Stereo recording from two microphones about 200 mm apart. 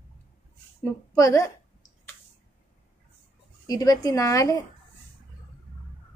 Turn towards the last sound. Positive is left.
turn(degrees=15)  # may be behind; listen again after turning